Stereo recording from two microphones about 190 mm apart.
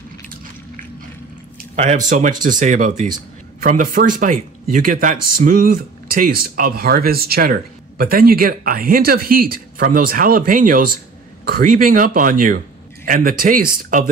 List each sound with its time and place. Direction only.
1.8 s speech: 40° right (ahead or behind)